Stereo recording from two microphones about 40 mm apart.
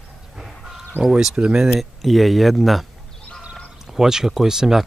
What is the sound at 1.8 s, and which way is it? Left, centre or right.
Speech, centre.